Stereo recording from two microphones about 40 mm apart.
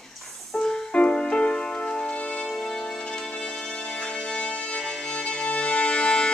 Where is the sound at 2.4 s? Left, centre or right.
Centre.